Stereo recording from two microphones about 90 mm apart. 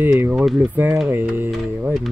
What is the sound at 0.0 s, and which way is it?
Speech, 20° right (ahead or behind).